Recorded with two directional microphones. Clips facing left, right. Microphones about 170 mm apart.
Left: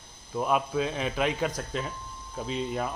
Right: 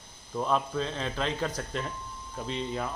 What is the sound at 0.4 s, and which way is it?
Speech, 10° left (ahead or behind).